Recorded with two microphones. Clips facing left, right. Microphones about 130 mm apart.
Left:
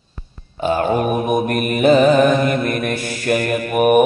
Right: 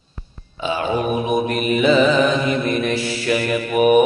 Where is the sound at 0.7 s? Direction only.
50° left (ahead or behind).